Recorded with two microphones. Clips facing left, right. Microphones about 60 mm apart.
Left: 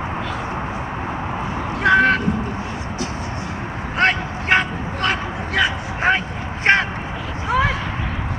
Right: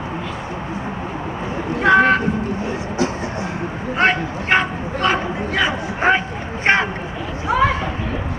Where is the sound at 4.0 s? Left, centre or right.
Centre.